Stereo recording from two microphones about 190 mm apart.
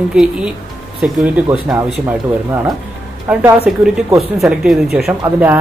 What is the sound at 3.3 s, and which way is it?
Speech, 5° right (ahead or behind).